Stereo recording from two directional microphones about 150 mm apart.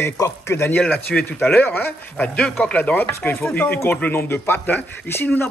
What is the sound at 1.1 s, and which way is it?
Speech, centre (ahead or behind).